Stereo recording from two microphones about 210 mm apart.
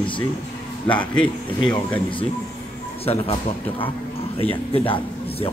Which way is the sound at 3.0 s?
30° left (ahead or behind).